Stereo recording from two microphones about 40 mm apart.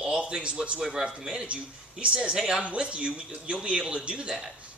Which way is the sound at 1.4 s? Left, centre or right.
Right.